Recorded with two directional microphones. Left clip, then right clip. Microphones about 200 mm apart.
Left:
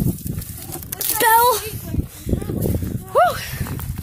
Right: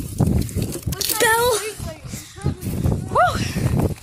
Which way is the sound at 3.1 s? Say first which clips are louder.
Left 2 dB; 15° left (ahead or behind).